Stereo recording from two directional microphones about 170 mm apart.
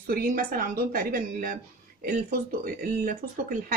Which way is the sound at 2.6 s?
55° right (ahead or behind).